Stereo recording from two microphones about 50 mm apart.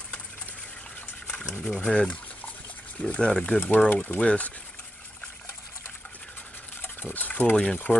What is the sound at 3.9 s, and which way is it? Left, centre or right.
Speech, left.